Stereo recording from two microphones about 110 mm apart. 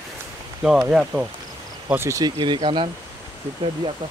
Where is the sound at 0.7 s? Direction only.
5° right (ahead or behind).